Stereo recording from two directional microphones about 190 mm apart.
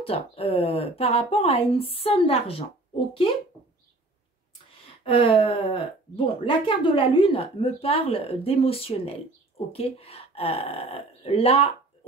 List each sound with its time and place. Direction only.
0.0 s speech: 30° left (ahead or behind)
5.0 s speech: 30° left (ahead or behind)